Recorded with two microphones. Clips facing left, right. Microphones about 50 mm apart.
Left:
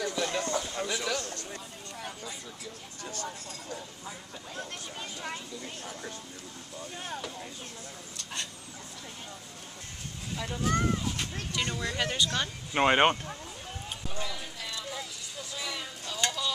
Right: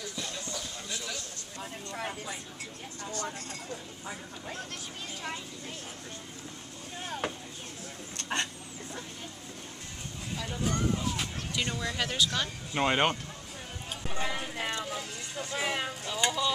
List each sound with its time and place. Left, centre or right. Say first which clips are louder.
0.0 s a sound: left 8 dB; left
0.5 s a sound: left 8 dB; left
0.8 s a sound: left 7 dB; left
2.0 s vehicle: right 4 dB; right
8.2 s vehicle: right 7 dB; right
10.3 s boat: left 2 dB; centre
11.1 s a sound: even; centre
11.8 s speech: left 1 dB; centre
12.7 s speech: left 4 dB; left
14.1 s clip-clop: right 6 dB; right
15.0 s vehicle: right 3 dB; right
16.1 s stir: right 2 dB; centre